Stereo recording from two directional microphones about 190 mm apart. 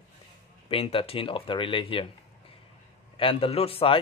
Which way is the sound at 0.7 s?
30° left (ahead or behind).